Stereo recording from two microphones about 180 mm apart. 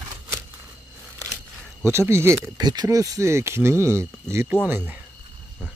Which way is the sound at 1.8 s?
15° right (ahead or behind).